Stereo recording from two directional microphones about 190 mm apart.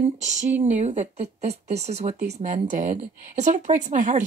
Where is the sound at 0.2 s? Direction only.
40° right (ahead or behind).